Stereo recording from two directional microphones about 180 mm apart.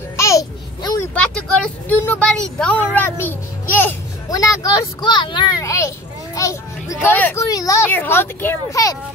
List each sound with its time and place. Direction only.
0.2 s babbling: 20° left (ahead or behind)
1.1 s speech: 5° left (ahead or behind)